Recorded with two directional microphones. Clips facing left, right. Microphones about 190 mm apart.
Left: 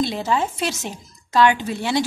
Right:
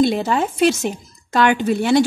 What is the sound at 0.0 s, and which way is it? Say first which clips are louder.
A woman's voice: right 5 dB; 55° right (ahead or behind).